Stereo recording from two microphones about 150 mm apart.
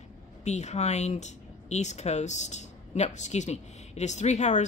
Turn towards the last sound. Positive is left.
turn(degrees=50)  # may be behind; listen again after turning